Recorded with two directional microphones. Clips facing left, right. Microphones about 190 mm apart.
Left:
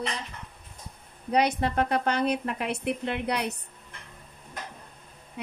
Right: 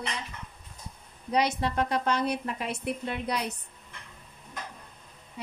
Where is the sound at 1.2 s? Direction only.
55° left (ahead or behind).